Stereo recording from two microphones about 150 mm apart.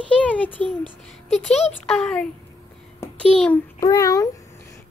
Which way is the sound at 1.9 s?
5° left (ahead or behind).